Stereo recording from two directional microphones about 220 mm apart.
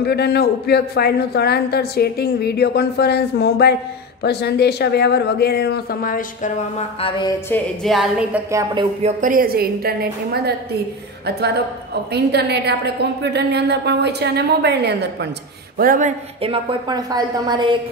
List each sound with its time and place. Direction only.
0.0 s a man's voice: 45° left (ahead or behind)
7.0 s music: 20° left (ahead or behind)
7.8 s a woman's voice: centre (ahead or behind)
8.5 s speech: 15° right (ahead or behind)
9.0 s a woman's voice: 35° right (ahead or behind)
16.3 s a woman's voice: 20° right (ahead or behind)